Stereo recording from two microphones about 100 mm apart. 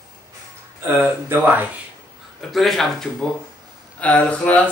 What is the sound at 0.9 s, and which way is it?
Speech, 20° right (ahead or behind).